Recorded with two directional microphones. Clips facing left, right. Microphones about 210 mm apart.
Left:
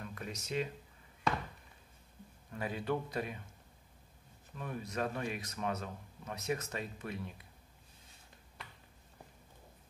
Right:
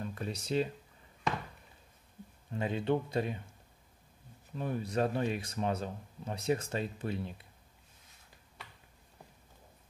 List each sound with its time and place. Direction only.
0.0 s speech: 30° right (ahead or behind)
2.5 s speech: 25° right (ahead or behind)
4.6 s speech: 30° right (ahead or behind)